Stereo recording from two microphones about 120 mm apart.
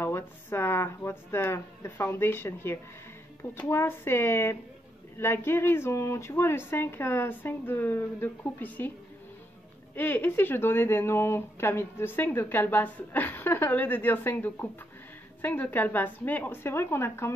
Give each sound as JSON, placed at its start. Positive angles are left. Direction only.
{"t": 0.0, "sound": "speech", "side_deg": 20}
{"t": 9.9, "sound": "speech", "side_deg": 15}